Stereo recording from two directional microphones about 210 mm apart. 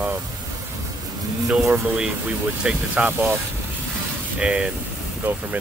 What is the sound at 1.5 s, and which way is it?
Speech, centre (ahead or behind).